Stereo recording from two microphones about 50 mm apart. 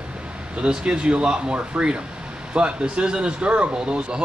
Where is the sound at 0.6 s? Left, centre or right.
Centre.